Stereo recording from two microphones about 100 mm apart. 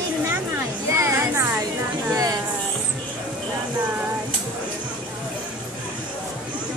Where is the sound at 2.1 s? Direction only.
35° right (ahead or behind).